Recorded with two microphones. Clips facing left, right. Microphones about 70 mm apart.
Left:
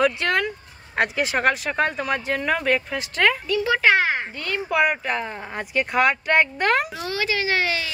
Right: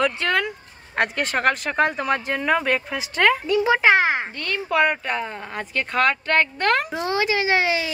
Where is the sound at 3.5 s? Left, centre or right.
Centre.